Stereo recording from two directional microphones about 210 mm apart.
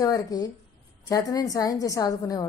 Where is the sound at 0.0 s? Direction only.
15° left (ahead or behind).